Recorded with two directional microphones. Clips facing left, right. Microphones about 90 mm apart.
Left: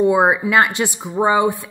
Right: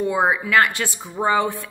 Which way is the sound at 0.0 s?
20° left (ahead or behind).